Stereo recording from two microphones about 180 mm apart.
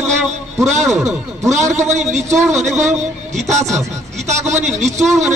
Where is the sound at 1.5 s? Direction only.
40° right (ahead or behind).